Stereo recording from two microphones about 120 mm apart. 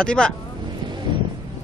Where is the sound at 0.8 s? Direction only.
40° right (ahead or behind).